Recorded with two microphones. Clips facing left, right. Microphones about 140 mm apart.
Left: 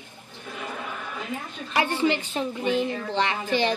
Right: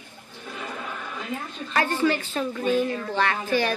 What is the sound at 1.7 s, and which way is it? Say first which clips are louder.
A woman's voice: even; 15° left (ahead or behind).